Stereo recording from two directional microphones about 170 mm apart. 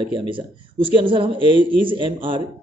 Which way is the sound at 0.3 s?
30° right (ahead or behind).